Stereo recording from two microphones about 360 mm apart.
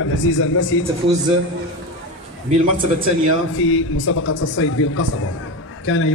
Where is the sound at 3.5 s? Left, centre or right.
Left.